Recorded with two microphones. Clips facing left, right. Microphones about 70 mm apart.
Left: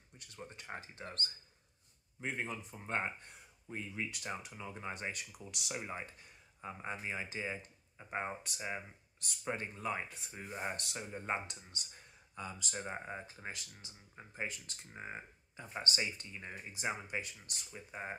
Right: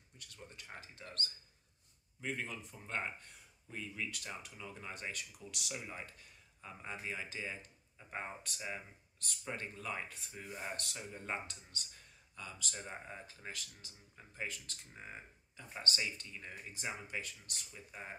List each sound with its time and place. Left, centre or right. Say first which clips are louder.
0.4 s speech: left 5 dB; left